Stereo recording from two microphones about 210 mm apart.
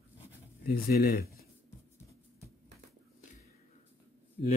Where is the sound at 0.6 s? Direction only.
45° left (ahead or behind).